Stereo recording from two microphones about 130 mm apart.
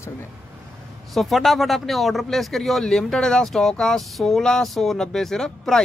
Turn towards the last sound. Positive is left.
turn(degrees=5)  # may be behind; listen again after turning